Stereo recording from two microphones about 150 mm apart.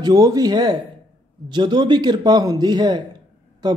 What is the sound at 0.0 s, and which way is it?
Speech, 25° right (ahead or behind).